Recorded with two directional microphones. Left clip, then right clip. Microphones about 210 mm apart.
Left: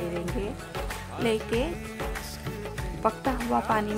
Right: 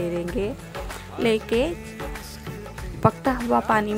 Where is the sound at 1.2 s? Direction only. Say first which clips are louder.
Right 6 dB; 20° right (ahead or behind).